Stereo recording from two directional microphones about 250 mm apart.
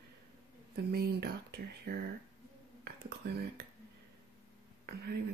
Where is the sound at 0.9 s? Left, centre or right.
Right.